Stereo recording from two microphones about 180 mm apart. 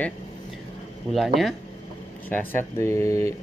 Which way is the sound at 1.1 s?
Centre (ahead or behind).